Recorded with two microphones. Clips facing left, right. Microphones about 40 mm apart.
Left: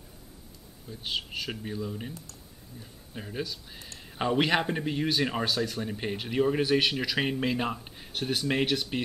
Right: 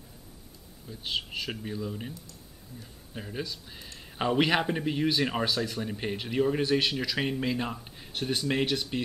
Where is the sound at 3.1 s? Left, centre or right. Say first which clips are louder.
Left 1 dB; centre.